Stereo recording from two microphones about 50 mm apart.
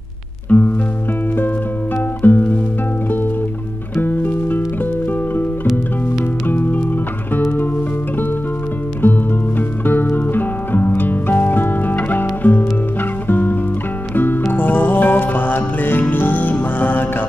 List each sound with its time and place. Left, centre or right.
0.5 s music: left
2.2 s music: left
4.0 s music: left
6.4 s music: left
9.6 s music: left